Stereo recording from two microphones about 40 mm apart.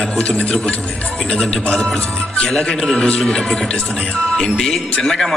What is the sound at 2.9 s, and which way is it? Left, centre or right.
Speech, left.